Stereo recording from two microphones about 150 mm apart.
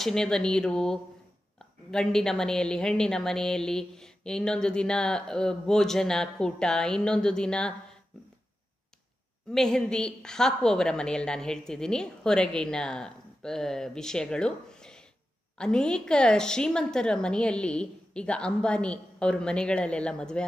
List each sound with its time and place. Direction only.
0.0 s a woman's voice: 5° left (ahead or behind)
9.5 s a woman's voice: 5° left (ahead or behind)